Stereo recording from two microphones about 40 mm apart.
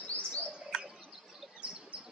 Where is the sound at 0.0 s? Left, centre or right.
Left.